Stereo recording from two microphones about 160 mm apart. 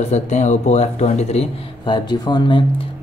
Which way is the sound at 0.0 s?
45° left (ahead or behind).